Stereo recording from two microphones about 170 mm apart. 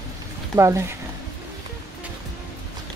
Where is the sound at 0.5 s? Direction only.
20° right (ahead or behind).